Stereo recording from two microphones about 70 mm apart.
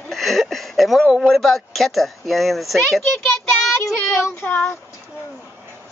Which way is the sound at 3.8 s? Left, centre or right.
Left.